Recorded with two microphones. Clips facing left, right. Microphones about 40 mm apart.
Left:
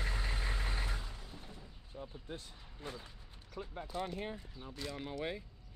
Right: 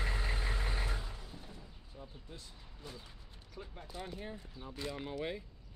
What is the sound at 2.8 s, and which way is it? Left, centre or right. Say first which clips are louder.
Speech: left 4 dB; left.